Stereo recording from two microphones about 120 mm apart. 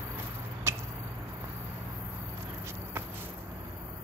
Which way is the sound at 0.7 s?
25° right (ahead or behind).